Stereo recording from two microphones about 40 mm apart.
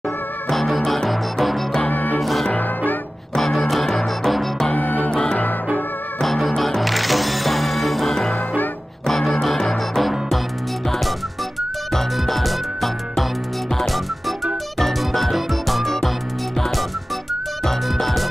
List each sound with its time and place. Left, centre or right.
0.5 s music: centre
1.9 s music: left
2.1 s music: centre
4.7 s music: left
5.1 s music: centre
6.2 s music: centre
11.9 s music: centre